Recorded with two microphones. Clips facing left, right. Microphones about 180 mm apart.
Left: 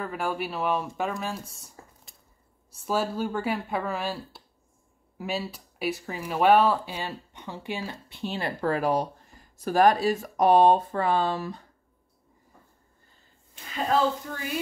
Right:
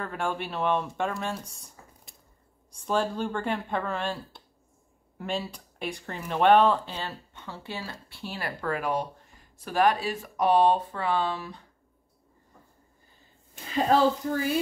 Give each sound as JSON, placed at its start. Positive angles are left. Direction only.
{"t": 0.0, "sound": "speech", "side_deg": 5}
{"t": 1.2, "sound": "squish", "side_deg": 0}
{"t": 2.7, "sound": "speech", "side_deg": 5}